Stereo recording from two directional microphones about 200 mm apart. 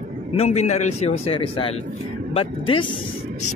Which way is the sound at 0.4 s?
35° left (ahead or behind).